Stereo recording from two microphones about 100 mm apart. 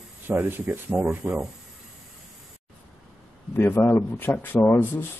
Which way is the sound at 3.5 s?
20° left (ahead or behind).